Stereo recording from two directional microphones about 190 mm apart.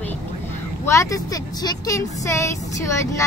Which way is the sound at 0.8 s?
15° left (ahead or behind).